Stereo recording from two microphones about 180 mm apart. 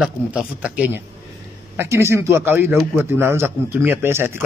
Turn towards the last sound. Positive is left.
turn(degrees=-15)  # may be behind; listen again after turning